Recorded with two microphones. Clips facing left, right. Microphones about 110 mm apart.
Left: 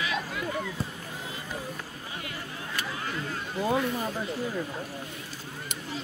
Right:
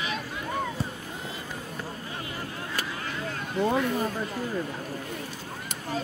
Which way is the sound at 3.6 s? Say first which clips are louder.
Right 2 dB; centre (ahead or behind).